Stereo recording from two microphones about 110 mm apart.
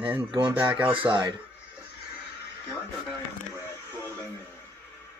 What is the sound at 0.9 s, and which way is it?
Speech, 50° right (ahead or behind).